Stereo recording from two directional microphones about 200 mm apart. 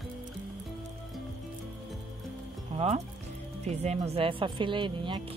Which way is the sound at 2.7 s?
30° right (ahead or behind).